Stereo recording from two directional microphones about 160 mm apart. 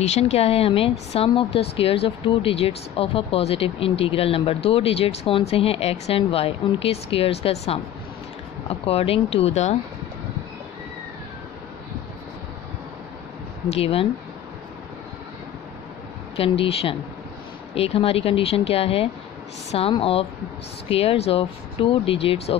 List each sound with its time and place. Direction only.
0.0 s a woman's voice: 40° left (ahead or behind)
13.7 s a woman's voice: 35° left (ahead or behind)
16.3 s a woman's voice: 35° left (ahead or behind)